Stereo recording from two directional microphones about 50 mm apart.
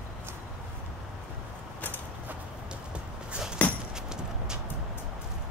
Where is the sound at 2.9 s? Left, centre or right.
Centre.